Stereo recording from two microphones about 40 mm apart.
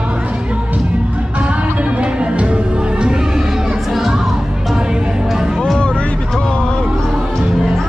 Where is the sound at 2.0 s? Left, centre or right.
Right.